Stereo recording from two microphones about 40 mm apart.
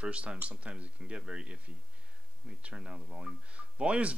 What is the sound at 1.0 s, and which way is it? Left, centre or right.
Speech, right.